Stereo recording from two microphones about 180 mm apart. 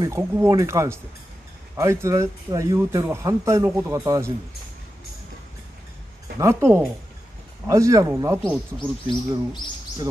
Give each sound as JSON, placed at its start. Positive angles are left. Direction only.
{"t": 0.0, "sound": "speech", "side_deg": -20}
{"t": 6.4, "sound": "speech", "side_deg": -15}